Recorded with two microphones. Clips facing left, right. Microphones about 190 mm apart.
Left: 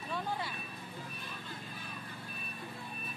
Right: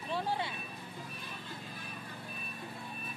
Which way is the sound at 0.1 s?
30° right (ahead or behind).